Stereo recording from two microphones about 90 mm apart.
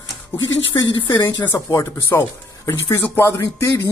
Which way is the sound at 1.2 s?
25° left (ahead or behind).